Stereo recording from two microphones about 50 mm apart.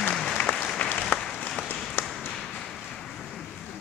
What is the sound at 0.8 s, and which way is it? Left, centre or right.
Applause, left.